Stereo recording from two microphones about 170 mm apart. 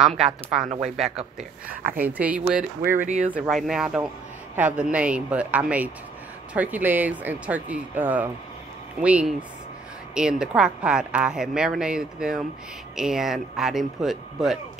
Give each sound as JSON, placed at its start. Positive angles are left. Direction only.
{"t": 0.7, "sound": "a woman's voice", "side_deg": 0}
{"t": 3.0, "sound": "speech", "side_deg": -45}
{"t": 3.3, "sound": "a woman's voice", "side_deg": -5}